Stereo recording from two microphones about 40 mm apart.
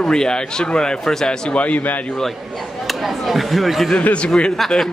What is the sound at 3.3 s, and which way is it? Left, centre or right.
Speech, centre.